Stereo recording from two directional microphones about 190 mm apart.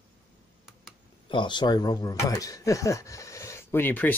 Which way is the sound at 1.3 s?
25° left (ahead or behind).